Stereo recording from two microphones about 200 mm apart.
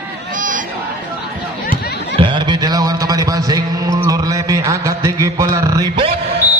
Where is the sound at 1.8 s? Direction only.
55° left (ahead or behind).